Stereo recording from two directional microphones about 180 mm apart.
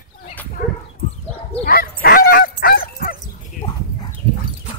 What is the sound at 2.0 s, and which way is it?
Dog, 55° left (ahead or behind).